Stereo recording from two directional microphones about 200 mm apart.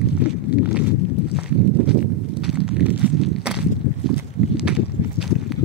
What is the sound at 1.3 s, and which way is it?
Walk, 5° right (ahead or behind).